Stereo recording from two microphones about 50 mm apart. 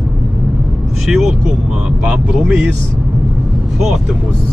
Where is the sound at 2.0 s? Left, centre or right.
Centre.